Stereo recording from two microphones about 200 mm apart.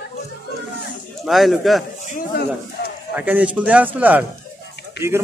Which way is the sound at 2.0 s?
45° left (ahead or behind).